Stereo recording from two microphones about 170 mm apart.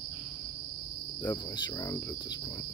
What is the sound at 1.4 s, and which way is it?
Cricket, 20° left (ahead or behind).